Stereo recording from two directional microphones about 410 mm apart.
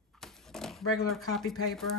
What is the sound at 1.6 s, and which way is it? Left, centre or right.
Speech, centre.